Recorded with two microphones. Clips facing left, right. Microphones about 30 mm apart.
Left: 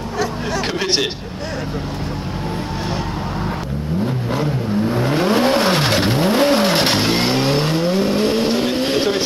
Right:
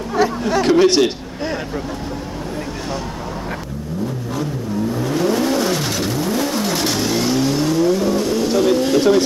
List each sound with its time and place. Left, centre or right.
0.8 s a man's voice: left
4.4 s vehicle: left